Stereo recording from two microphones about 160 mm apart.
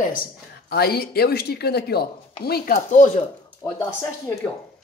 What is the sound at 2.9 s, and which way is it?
Speech, 50° left (ahead or behind).